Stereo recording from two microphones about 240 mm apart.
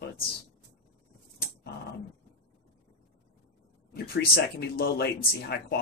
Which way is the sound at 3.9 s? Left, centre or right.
Left.